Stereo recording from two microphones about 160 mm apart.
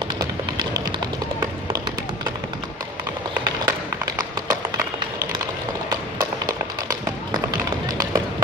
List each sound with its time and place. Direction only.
0.2 s music: 20° right (ahead or behind)
3.6 s run: 20° right (ahead or behind)
5.9 s tap: 25° right (ahead or behind)
7.5 s run: 20° right (ahead or behind)